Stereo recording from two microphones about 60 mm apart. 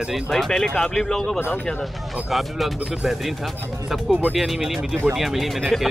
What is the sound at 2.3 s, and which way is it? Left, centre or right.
Speech, centre.